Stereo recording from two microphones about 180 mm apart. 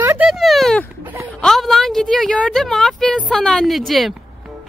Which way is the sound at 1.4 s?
Centre (ahead or behind).